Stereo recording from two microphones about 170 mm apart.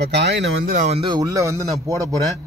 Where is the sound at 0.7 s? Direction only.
40° right (ahead or behind); by 1.7 s 20° right (ahead or behind).